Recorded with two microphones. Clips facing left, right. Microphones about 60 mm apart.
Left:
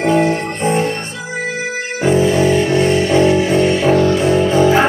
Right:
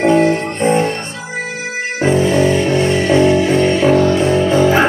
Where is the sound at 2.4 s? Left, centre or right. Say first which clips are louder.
Even; right.